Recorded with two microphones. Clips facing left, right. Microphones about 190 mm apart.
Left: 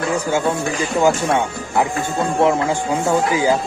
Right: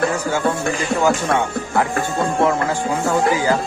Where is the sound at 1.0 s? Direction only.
20° left (ahead or behind).